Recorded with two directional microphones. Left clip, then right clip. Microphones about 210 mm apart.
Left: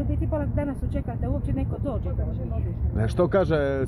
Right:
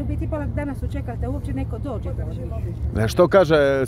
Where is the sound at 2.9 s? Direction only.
55° right (ahead or behind).